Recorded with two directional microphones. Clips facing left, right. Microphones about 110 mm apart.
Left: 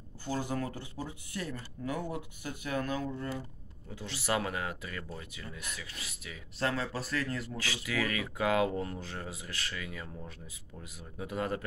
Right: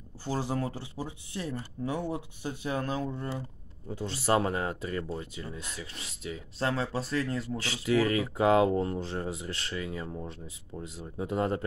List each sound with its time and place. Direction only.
0.2 s speech: 30° right (ahead or behind)